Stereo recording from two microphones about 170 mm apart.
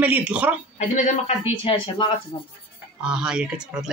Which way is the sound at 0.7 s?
45° left (ahead or behind).